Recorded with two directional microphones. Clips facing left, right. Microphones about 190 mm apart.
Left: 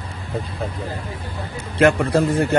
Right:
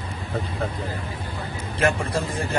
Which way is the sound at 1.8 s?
65° left (ahead or behind).